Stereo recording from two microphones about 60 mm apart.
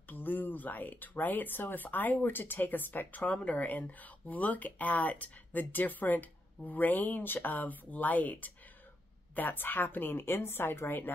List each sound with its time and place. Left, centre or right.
0.1 s speech: left